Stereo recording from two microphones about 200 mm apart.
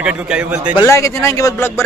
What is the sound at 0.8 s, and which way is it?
Speech, 15° left (ahead or behind).